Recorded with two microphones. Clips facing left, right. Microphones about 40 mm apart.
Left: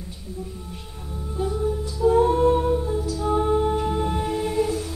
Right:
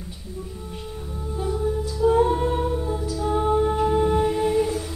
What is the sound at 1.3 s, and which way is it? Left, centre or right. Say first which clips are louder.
Music: even; centre.